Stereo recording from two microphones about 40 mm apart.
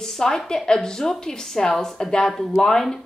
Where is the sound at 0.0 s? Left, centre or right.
Centre.